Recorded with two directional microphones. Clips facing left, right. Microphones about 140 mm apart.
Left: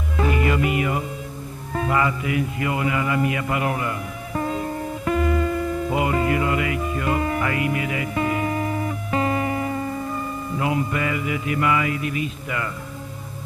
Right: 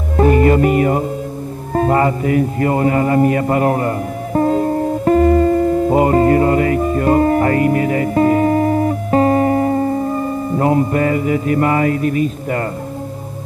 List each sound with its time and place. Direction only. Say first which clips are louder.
0.2 s music: right 10 dB; 40° right (ahead or behind)
1.7 s a man's voice: right 8 dB; 40° right (ahead or behind)